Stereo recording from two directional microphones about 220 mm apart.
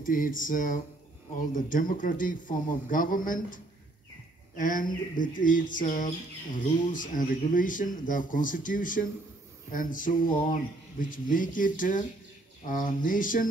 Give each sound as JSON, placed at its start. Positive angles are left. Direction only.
{"t": 0.0, "sound": "speech", "side_deg": 40}
{"t": 4.6, "sound": "speech", "side_deg": 40}